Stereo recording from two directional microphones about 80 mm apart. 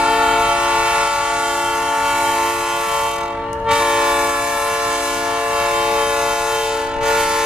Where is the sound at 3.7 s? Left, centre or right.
Centre.